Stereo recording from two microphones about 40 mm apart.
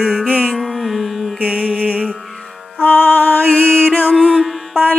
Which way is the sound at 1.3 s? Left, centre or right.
Right.